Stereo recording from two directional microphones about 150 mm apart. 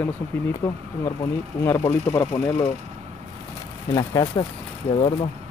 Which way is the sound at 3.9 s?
30° left (ahead or behind).